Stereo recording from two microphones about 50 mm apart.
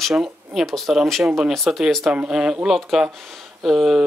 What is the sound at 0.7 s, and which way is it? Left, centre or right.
Speech, centre.